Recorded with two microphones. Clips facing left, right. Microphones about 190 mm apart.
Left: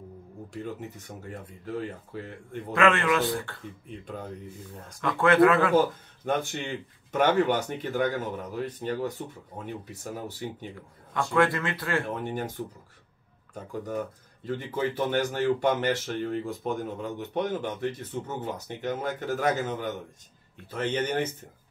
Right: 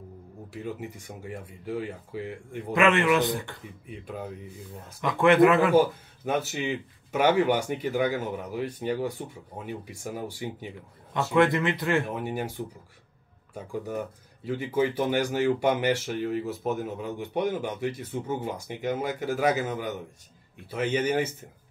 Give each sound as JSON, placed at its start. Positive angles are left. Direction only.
{"t": 0.5, "sound": "speech", "side_deg": -10}
{"t": 5.0, "sound": "speech", "side_deg": -20}
{"t": 12.1, "sound": "speech", "side_deg": -10}
{"t": 13.7, "sound": "speech", "side_deg": -10}